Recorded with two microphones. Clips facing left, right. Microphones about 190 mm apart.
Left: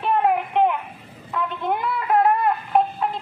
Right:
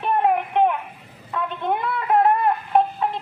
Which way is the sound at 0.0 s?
5° left (ahead or behind).